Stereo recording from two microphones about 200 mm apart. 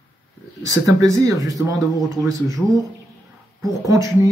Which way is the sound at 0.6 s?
15° right (ahead or behind).